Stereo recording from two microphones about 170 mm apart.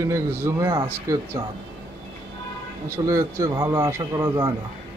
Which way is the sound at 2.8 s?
15° right (ahead or behind).